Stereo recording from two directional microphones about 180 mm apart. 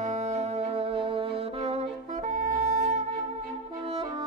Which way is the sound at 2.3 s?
45° right (ahead or behind).